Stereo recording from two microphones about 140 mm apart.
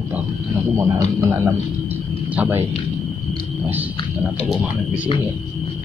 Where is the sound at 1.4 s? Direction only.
15° right (ahead or behind).